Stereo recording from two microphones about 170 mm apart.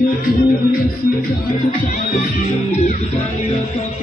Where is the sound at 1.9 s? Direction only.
50° left (ahead or behind).